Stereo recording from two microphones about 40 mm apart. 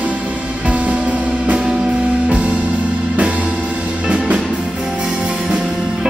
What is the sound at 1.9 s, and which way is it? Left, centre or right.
Music, right.